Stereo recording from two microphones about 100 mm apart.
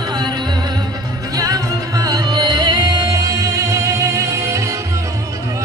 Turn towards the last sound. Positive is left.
turn(degrees=-30)  # may be behind; listen again after turning